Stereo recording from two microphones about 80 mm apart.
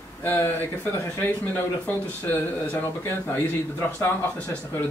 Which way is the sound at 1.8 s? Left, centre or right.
Centre.